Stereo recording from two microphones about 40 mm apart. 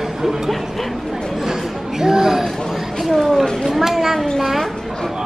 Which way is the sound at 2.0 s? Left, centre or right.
Centre.